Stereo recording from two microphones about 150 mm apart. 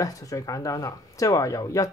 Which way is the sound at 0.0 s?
20° left (ahead or behind).